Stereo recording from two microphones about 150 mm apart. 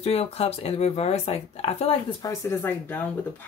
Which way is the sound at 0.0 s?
45° left (ahead or behind).